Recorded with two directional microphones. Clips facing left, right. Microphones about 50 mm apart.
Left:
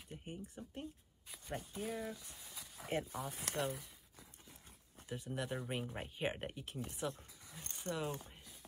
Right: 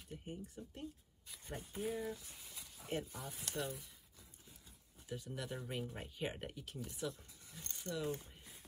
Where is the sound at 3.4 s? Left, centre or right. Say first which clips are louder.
Left 2 dB; left.